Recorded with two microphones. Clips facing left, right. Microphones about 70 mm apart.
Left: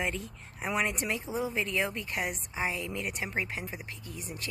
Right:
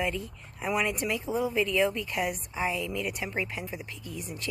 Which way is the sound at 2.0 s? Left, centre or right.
Left.